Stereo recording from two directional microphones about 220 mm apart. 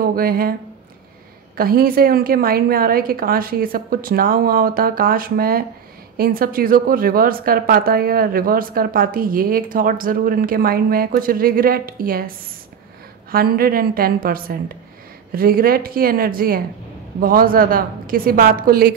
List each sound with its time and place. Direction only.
0.0 s speech: 40° right (ahead or behind)
1.6 s a woman's voice: 40° right (ahead or behind)
13.3 s a woman's voice: 40° right (ahead or behind)